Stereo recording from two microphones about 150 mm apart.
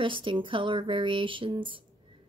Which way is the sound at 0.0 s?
35° right (ahead or behind).